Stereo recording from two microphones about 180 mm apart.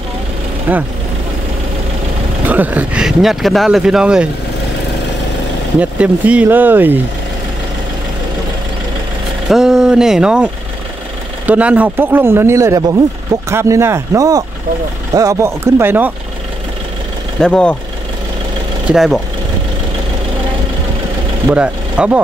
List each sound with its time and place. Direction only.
0.7 s speech: 10° right (ahead or behind)
2.4 s speech: 10° right (ahead or behind)
5.8 s speech: 5° right (ahead or behind)
9.5 s speech: 5° right (ahead or behind)
17.4 s speech: 5° left (ahead or behind)
18.9 s speech: centre (ahead or behind)
21.5 s speech: 5° right (ahead or behind)